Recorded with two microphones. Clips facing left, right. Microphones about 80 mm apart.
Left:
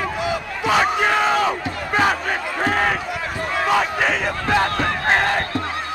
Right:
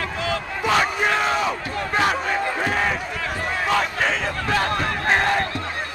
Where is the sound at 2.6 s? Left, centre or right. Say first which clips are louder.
Left 6 dB; left.